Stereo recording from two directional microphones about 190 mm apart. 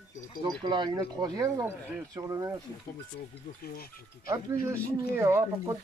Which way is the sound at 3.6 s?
50° left (ahead or behind).